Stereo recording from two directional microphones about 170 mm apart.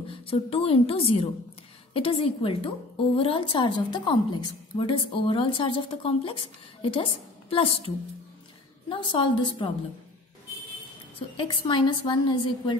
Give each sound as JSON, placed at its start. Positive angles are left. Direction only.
{"t": 0.1, "sound": "a woman's voice", "side_deg": 35}
{"t": 11.3, "sound": "a woman's voice", "side_deg": 25}